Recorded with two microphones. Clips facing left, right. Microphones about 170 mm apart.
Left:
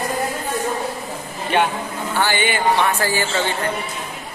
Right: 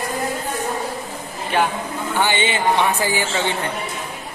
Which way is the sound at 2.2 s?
20° right (ahead or behind).